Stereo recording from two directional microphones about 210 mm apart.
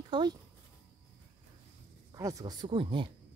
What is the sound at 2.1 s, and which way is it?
Speech, 15° right (ahead or behind).